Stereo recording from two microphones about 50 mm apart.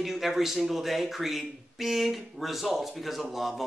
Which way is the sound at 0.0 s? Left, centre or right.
Centre.